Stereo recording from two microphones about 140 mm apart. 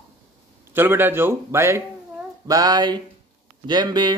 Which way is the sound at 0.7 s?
15° right (ahead or behind).